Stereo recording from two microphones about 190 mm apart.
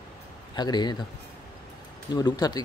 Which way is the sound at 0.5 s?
20° left (ahead or behind).